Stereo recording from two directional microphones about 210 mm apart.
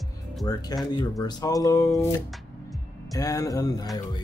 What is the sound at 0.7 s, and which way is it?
Speech, 20° left (ahead or behind).